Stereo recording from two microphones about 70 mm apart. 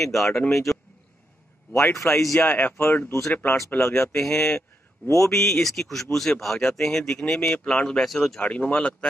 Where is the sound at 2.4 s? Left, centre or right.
Left.